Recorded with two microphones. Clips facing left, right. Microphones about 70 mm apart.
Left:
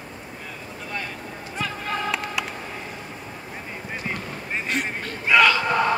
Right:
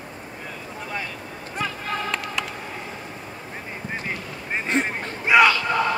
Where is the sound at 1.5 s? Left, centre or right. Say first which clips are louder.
Even; centre.